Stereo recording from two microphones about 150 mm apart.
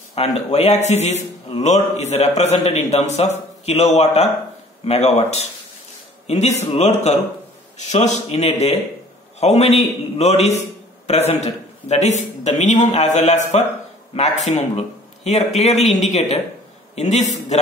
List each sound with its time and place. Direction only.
0.1 s a man's voice: 45° left (ahead or behind)